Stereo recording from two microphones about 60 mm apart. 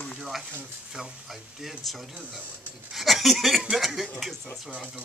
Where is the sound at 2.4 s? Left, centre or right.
Right.